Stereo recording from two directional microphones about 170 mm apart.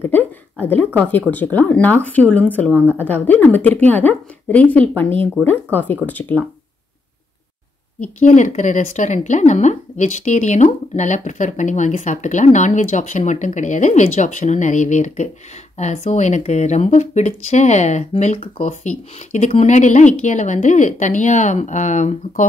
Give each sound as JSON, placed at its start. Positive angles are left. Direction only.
{"t": 0.0, "sound": "a woman's voice", "side_deg": 10}
{"t": 2.7, "sound": "a woman's voice", "side_deg": -10}
{"t": 3.1, "sound": "a woman's voice", "side_deg": 10}
{"t": 8.0, "sound": "a woman's voice", "side_deg": 45}